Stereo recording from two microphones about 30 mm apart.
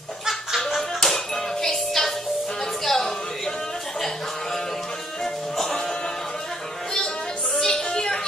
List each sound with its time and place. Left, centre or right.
0.7 s music: centre
2.8 s a sound: centre
5.2 s music: centre
7.6 s music: left